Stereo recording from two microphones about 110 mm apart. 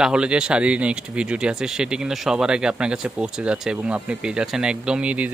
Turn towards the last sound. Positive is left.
turn(degrees=-10)  # may be behind; listen again after turning